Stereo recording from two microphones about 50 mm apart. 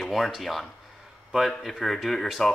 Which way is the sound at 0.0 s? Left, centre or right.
Centre.